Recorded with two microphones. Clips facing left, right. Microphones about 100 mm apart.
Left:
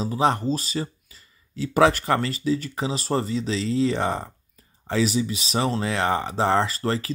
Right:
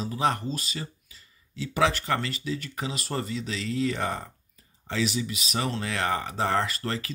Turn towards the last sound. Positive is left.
turn(degrees=30)  # may be behind; listen again after turning